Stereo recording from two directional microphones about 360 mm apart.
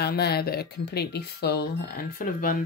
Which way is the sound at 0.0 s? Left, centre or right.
Left.